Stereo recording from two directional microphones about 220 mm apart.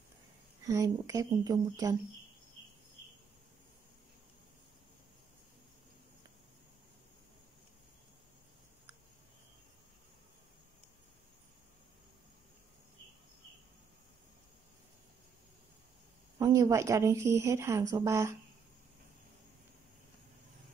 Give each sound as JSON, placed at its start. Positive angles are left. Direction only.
{"t": 0.7, "sound": "speech", "side_deg": -15}
{"t": 16.3, "sound": "speech", "side_deg": -15}